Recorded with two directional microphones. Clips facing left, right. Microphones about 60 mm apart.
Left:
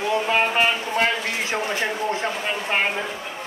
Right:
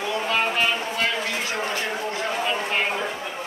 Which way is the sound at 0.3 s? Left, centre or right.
Left.